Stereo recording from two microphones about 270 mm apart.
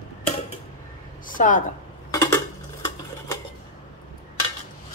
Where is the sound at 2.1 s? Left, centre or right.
Centre.